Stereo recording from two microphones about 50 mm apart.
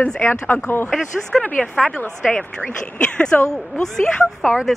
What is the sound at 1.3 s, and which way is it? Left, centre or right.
Speech, centre.